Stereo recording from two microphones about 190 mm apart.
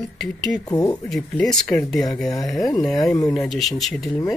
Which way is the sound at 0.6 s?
20° left (ahead or behind).